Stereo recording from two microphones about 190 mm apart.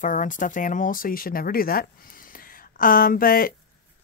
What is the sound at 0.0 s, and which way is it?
Speech, 45° left (ahead or behind).